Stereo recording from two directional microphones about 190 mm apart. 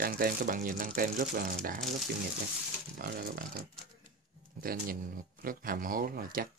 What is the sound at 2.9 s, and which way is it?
Speech, 50° right (ahead or behind).